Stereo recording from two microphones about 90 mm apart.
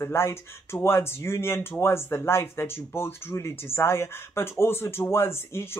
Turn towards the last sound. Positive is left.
turn(degrees=30)  # may be behind; listen again after turning